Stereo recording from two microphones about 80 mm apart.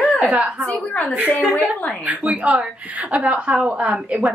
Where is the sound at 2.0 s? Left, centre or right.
Centre.